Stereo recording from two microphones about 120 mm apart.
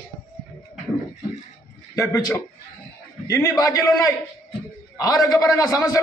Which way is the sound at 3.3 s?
25° left (ahead or behind).